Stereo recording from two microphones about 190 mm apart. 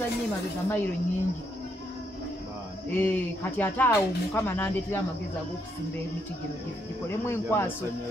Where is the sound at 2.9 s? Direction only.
10° left (ahead or behind).